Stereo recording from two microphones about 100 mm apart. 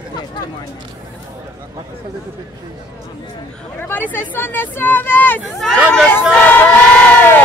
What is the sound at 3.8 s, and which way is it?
Speech, 20° left (ahead or behind).